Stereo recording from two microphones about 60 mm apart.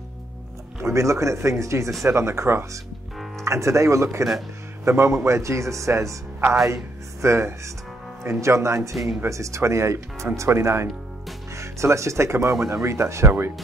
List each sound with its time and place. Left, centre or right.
0.8 s speech: right